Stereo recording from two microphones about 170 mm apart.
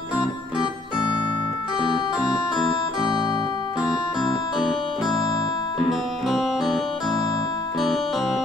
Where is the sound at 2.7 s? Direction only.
25° left (ahead or behind).